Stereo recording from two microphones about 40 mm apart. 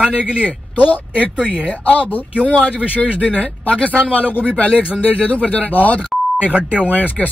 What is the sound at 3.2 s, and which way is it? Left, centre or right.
Speech, left.